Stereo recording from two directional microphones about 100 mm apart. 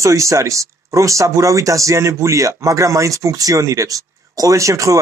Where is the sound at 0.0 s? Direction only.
30° right (ahead or behind).